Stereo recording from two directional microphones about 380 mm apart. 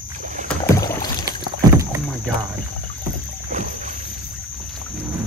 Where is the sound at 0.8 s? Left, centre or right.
Centre.